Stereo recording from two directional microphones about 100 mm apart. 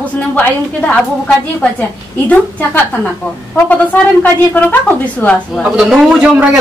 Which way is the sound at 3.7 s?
15° left (ahead or behind).